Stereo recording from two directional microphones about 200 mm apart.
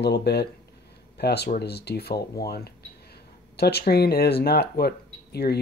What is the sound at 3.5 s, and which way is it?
Speech, 55° left (ahead or behind).